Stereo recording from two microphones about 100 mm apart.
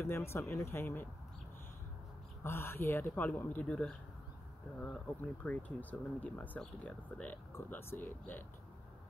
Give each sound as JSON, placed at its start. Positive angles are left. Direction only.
{"t": 0.0, "sound": "speech", "side_deg": 25}
{"t": 2.4, "sound": "speech", "side_deg": 25}